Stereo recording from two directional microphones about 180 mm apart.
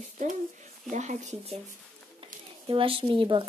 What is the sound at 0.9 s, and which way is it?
Speech, 40° right (ahead or behind).